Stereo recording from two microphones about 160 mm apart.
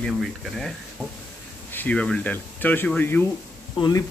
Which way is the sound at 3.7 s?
30° left (ahead or behind).